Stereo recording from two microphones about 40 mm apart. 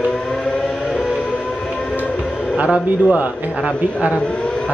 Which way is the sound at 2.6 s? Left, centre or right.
Right.